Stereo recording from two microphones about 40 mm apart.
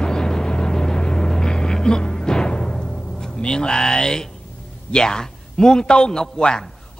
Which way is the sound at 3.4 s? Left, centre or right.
Left.